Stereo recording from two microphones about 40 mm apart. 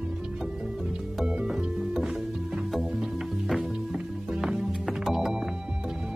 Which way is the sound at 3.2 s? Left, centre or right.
Centre.